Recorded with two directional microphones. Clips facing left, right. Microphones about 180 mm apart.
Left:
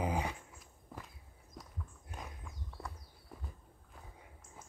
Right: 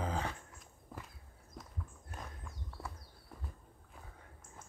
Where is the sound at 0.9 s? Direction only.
Centre (ahead or behind).